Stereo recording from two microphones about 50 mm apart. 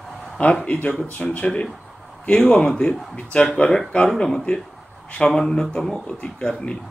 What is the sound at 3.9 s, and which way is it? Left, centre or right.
Speech, left.